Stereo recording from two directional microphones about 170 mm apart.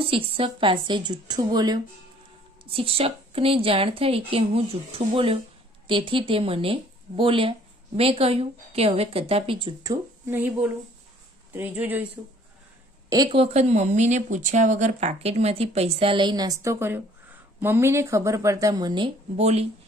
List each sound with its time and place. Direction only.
0.0 s a woman's voice: 30° right (ahead or behind)
10.2 s speech: 10° right (ahead or behind)
13.3 s speech: 35° right (ahead or behind)
19.3 s speech: 40° right (ahead or behind)